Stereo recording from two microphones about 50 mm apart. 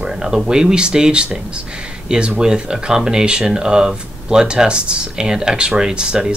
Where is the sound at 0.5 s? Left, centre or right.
Centre.